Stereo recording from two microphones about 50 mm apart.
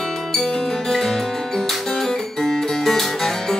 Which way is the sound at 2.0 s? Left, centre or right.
Centre.